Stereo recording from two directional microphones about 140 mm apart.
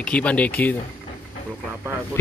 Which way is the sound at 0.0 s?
10° left (ahead or behind).